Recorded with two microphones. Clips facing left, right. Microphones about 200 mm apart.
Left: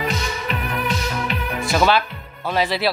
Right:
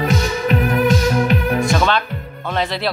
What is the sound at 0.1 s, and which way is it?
Music, 45° right (ahead or behind).